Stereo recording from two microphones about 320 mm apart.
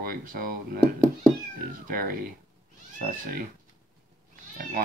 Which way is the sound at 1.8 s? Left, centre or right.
Right.